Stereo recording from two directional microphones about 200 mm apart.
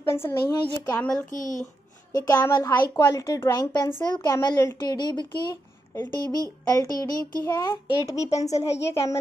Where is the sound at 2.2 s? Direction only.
20° left (ahead or behind).